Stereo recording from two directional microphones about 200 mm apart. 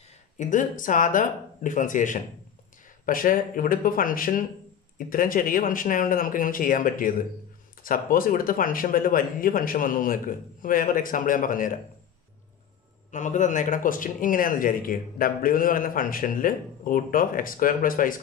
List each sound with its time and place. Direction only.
0.4 s speech: 40° left (ahead or behind)
13.1 s speech: 40° left (ahead or behind)